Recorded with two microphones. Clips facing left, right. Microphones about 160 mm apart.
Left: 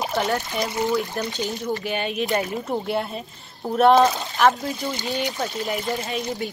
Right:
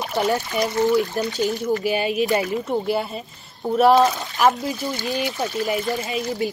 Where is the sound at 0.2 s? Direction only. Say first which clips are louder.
Right 4 dB; 5° right (ahead or behind).